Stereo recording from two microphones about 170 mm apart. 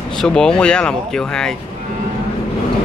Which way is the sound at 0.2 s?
5° left (ahead or behind).